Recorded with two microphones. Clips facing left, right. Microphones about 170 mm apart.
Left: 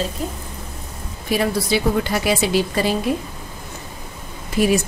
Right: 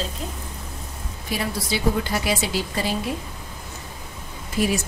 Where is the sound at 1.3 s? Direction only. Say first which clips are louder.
Left 7 dB; 70° left (ahead or behind).